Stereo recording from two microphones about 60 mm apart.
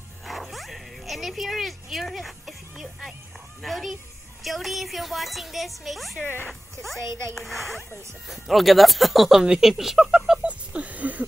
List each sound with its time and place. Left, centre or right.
0.2 s dog: centre
3.6 s a woman's voice: centre
10.4 s a sound: right